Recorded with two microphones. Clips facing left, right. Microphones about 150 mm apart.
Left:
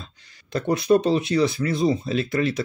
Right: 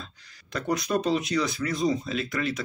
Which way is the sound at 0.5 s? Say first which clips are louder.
Left 8 dB; 30° left (ahead or behind).